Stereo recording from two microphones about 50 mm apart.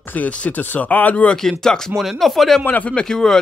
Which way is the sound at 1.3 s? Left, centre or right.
Centre.